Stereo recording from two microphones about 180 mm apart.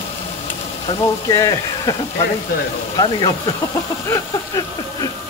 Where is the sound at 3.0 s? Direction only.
20° left (ahead or behind).